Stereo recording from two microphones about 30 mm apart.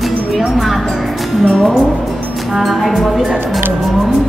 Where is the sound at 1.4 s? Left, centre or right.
Left.